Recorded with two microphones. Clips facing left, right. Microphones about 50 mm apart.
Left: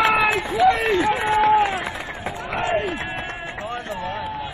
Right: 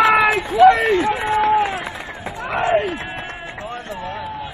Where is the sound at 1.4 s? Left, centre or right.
Centre.